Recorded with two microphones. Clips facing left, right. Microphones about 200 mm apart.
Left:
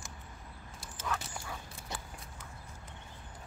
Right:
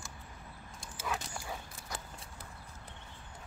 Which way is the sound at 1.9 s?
25° left (ahead or behind).